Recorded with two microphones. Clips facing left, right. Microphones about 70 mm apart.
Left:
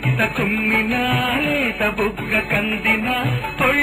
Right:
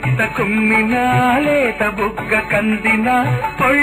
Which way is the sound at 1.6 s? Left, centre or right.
Right.